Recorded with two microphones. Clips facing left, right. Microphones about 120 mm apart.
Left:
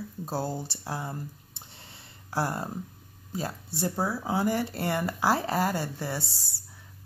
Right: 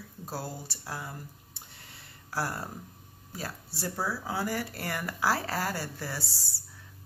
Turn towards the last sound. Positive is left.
turn(degrees=20)  # may be behind; listen again after turning